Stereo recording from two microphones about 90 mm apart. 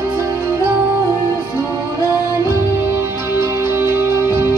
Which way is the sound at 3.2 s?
30° right (ahead or behind).